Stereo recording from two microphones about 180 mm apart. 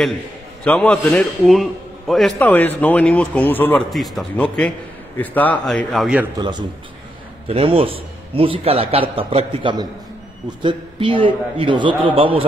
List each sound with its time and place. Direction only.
0.7 s a man's voice: 5° left (ahead or behind)
3.9 s a man's voice: centre (ahead or behind)
7.4 s a man's voice: 30° right (ahead or behind)